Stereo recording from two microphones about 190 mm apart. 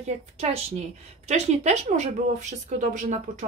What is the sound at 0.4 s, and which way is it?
A woman's voice, 35° right (ahead or behind).